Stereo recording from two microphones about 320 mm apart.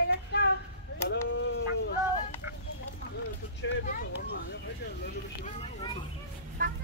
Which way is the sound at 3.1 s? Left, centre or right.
Left.